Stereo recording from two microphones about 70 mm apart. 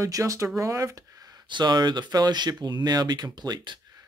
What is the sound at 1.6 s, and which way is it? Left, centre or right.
Speech, right.